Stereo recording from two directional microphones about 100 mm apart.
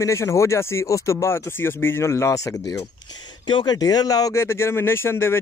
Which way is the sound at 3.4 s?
50° left (ahead or behind).